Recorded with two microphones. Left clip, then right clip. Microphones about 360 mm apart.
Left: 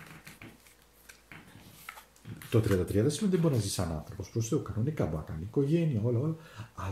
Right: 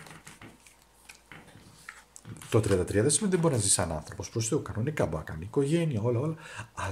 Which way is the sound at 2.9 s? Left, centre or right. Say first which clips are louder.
Right 3 dB; centre.